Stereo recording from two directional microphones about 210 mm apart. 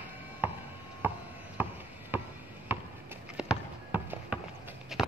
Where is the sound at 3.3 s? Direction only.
5° right (ahead or behind).